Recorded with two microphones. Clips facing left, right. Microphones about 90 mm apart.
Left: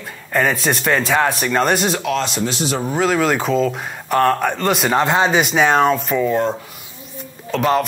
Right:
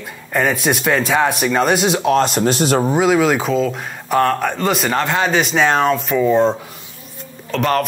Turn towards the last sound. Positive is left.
turn(degrees=5)  # may be behind; listen again after turning